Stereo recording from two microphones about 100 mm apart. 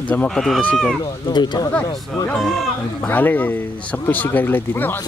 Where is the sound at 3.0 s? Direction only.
15° left (ahead or behind).